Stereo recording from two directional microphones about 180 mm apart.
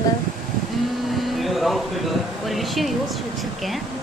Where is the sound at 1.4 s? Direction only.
Centre (ahead or behind).